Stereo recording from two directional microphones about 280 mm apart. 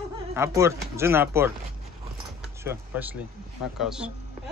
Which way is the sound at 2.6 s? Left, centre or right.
Centre.